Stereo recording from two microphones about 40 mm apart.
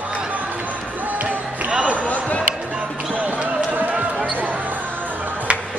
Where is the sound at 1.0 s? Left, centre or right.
Right.